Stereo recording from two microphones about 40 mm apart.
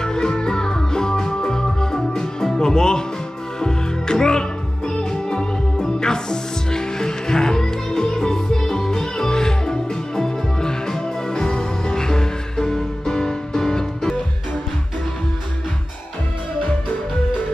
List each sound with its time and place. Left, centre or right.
0.0 s music: centre